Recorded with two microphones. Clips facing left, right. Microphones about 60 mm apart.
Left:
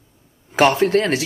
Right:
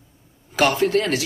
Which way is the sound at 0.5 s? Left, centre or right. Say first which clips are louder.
Left 3 dB; left.